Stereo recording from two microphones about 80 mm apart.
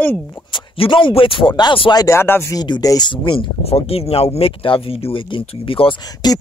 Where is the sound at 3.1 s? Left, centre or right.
Left.